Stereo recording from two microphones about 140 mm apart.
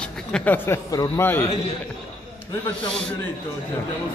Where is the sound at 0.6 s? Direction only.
25° left (ahead or behind).